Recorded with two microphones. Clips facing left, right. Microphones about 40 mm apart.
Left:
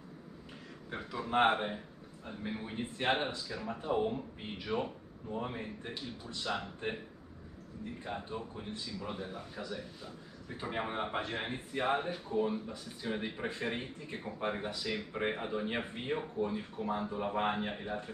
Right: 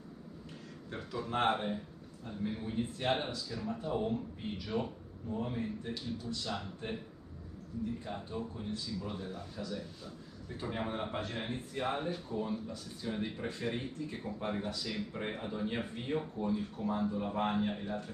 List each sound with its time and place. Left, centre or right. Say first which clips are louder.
0.8 s speech: left 1 dB; centre
8.0 s speech: even; left